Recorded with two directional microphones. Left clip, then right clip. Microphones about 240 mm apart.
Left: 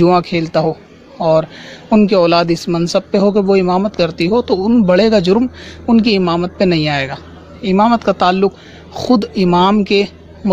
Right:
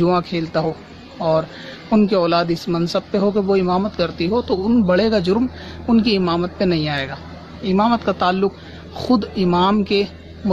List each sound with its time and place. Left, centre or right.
0.0 s a man's voice: left